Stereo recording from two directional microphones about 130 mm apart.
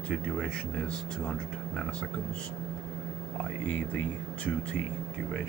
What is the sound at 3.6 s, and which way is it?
Speech, 10° left (ahead or behind).